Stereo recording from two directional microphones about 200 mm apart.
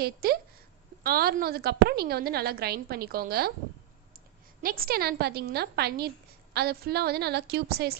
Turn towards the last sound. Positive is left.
turn(degrees=-50)  # may be behind; listen again after turning